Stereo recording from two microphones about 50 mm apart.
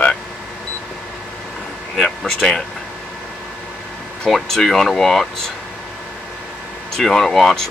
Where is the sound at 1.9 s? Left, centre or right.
Centre.